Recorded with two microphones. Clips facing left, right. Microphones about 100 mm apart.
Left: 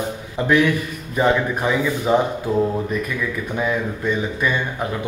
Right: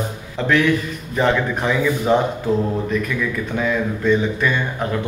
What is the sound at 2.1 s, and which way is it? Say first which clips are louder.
Speech: even; 10° left (ahead or behind).